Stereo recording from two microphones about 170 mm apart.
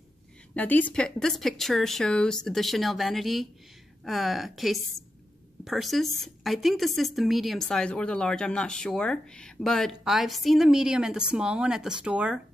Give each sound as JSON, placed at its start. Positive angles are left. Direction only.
{"t": 0.6, "sound": "speech", "side_deg": 10}